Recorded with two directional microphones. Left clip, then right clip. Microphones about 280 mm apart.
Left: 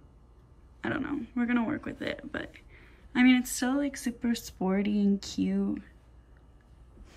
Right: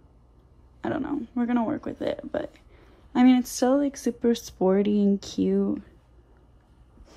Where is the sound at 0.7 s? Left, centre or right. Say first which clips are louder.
Right 4 dB; centre.